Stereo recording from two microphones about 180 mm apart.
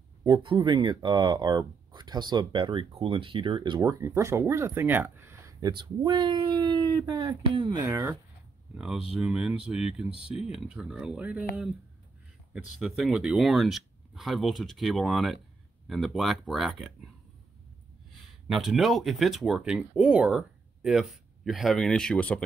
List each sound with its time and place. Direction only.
0.2 s speech: 25° right (ahead or behind)
4.0 s speech: 15° right (ahead or behind)
7.9 s speech: 15° right (ahead or behind)
9.1 s speech: centre (ahead or behind)
18.5 s speech: centre (ahead or behind)